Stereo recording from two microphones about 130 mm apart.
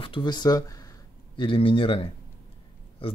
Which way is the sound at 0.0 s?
40° left (ahead or behind).